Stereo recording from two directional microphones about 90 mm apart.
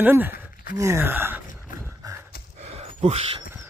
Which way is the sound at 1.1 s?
25° right (ahead or behind).